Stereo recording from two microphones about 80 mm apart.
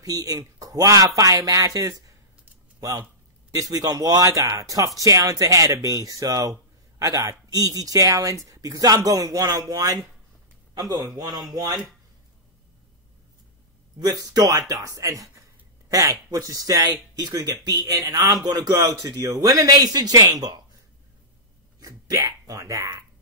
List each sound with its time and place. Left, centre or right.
0.0 s a man's voice: right
14.3 s speech: right
21.7 s speech: right